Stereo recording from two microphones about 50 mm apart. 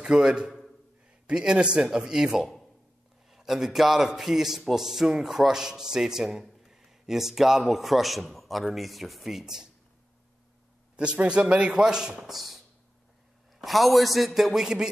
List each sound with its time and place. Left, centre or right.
0.0 s a man's voice: centre
11.0 s a man's voice: right